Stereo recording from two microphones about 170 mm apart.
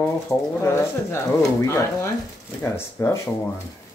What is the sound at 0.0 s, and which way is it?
Speech, 15° left (ahead or behind).